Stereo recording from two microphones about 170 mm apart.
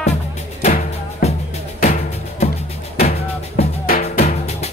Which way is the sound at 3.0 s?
40° left (ahead or behind).